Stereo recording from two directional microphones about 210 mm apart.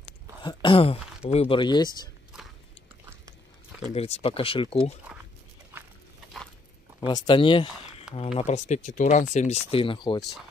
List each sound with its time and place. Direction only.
0.4 s speech: 20° left (ahead or behind)
3.9 s speech: 30° left (ahead or behind)
7.1 s speech: 20° left (ahead or behind)